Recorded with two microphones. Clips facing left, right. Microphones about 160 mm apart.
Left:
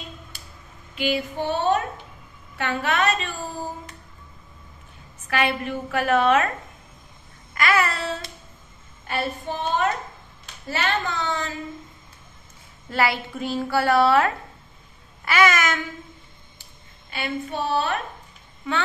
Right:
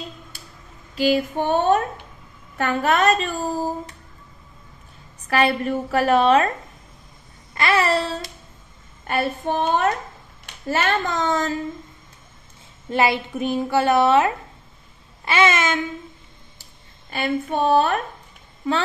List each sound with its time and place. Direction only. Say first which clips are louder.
0.9 s female singing: right 6 dB; 35° right (ahead or behind)
1.4 s a woman's voice: right 2 dB; 50° right (ahead or behind)
5.2 s a woman's voice: right 4 dB; 35° right (ahead or behind)
7.5 s a woman's voice: right 3 dB; 30° right (ahead or behind)
9.0 s a woman's voice: right 4 dB; 55° right (ahead or behind)
10.7 s a woman's voice: right 4 dB; 45° right (ahead or behind)
12.9 s a woman's voice: right 3 dB; 20° right (ahead or behind)
17.1 s a woman's voice: right 5 dB; 50° right (ahead or behind)